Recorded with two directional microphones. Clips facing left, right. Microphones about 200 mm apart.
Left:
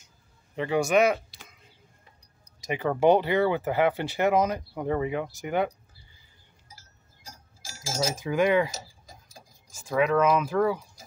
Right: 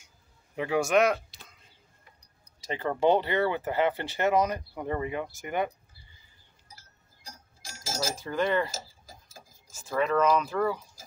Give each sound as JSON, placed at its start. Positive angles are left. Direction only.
{"t": 0.6, "sound": "speech", "side_deg": 0}
{"t": 2.6, "sound": "speech", "side_deg": 15}
{"t": 7.6, "sound": "bell", "side_deg": 0}
{"t": 8.2, "sound": "speech", "side_deg": 15}
{"t": 9.7, "sound": "a sound", "side_deg": 15}
{"t": 10.0, "sound": "speech", "side_deg": 5}